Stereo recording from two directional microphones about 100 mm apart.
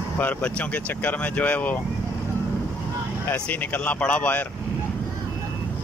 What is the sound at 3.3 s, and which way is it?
Speech, 20° left (ahead or behind).